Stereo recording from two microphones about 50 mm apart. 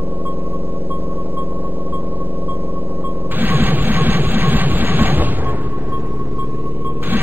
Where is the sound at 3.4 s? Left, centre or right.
Right.